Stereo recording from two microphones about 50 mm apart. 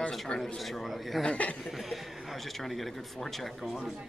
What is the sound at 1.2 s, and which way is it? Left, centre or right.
Speech, left.